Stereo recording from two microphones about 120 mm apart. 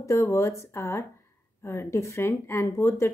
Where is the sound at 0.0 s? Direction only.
25° left (ahead or behind).